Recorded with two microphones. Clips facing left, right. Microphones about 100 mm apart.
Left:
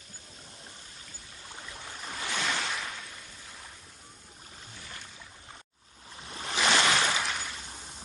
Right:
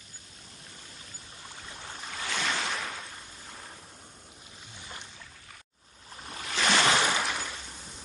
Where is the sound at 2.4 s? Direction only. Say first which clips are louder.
Right 1 dB; centre (ahead or behind).